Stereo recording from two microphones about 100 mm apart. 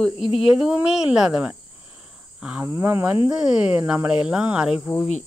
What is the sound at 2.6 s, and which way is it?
Speech, 30° right (ahead or behind).